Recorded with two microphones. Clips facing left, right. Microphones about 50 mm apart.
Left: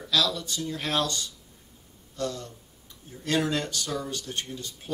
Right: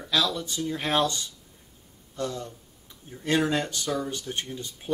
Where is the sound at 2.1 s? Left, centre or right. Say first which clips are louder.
Even; right.